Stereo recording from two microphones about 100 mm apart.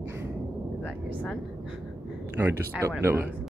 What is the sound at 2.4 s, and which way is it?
Speech, 20° right (ahead or behind).